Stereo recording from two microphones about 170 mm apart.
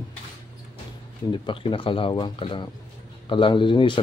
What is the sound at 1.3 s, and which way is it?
Speech, 30° left (ahead or behind).